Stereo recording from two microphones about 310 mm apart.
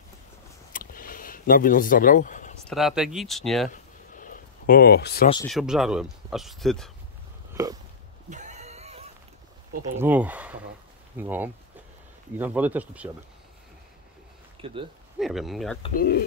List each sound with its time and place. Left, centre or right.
0.7 s a sound: left
2.6 s speech: centre
4.2 s a sound: left
5.5 s speech: centre
8.3 s neigh: right
9.9 s speech: centre
14.6 s speech: centre
15.1 s speech: centre
15.8 s speech: left